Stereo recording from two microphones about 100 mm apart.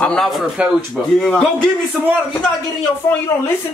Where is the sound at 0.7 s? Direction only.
5° right (ahead or behind).